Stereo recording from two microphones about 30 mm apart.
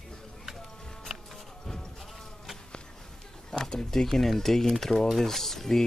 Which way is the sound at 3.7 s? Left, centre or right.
Left.